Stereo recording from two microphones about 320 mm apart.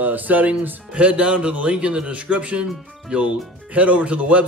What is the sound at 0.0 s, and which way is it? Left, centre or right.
Speech, centre.